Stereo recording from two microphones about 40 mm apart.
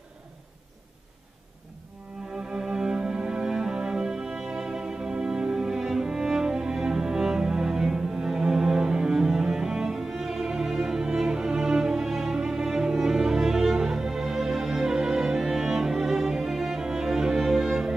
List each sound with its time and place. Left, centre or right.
2.3 s music: centre